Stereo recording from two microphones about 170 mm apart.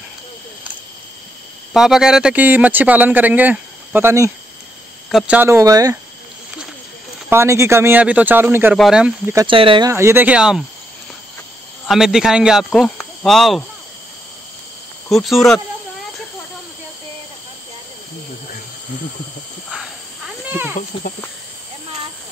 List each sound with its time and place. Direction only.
1.7 s speech: 5° right (ahead or behind); by 5.9 s 20° right (ahead or behind)
7.2 s speech: 15° right (ahead or behind)
9.5 s speech: 30° right (ahead or behind)
9.8 s speech: 15° right (ahead or behind)
11.8 s speech: centre (ahead or behind)
15.0 s speech: centre (ahead or behind)
20.4 s snake: 10° right (ahead or behind)
20.9 s speech: 30° left (ahead or behind)